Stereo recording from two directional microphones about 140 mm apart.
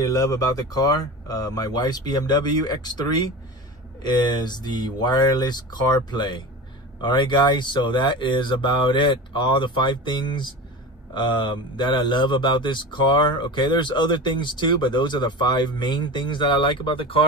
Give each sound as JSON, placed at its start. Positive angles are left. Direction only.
{"t": 0.0, "sound": "a man's voice", "side_deg": 25}